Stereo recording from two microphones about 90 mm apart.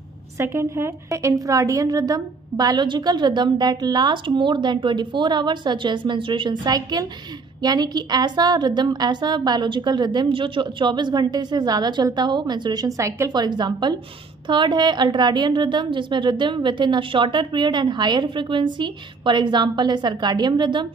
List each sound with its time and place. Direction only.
0.4 s a woman's voice: 25° right (ahead or behind); by 12.8 s 55° right (ahead or behind)
12.8 s a woman's voice: 35° right (ahead or behind)
13.3 s a woman's voice: 50° right (ahead or behind)